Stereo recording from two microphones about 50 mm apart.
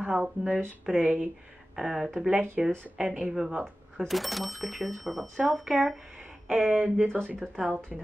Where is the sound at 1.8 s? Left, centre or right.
Centre.